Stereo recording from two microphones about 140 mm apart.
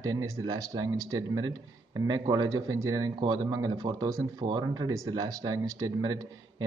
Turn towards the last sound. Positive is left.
turn(degrees=-25)  # may be behind; listen again after turning